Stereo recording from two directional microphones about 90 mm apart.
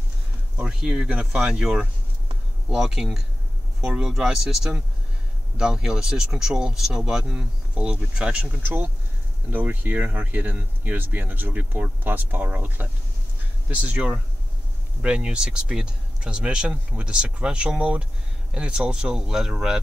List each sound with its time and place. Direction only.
0.6 s speech: 10° right (ahead or behind)